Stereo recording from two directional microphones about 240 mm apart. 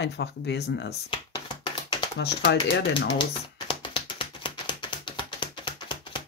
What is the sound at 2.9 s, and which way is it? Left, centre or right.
Typewriter, centre.